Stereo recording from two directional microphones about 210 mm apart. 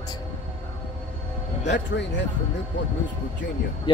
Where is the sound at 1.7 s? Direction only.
60° left (ahead or behind).